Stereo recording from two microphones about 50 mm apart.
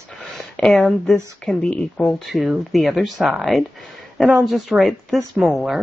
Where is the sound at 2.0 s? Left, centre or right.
Centre.